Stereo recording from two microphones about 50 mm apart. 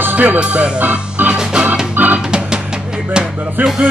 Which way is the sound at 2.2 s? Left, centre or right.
Centre.